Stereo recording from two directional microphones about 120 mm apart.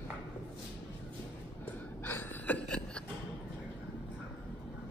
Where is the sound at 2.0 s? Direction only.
15° left (ahead or behind).